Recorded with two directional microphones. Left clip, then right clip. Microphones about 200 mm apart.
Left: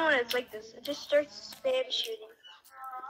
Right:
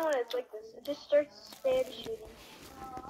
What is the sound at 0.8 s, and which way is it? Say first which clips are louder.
Speech: even; 50° left (ahead or behind).